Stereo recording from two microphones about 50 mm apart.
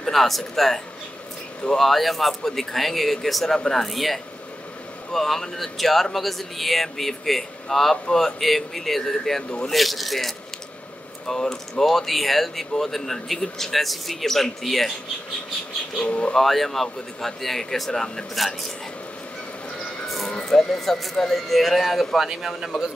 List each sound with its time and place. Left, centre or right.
0.0 s speech: centre
16.0 s speech: left
16.3 s speech: centre
20.2 s a man's voice: centre